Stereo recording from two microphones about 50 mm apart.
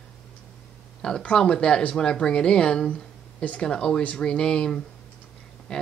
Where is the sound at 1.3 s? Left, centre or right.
Centre.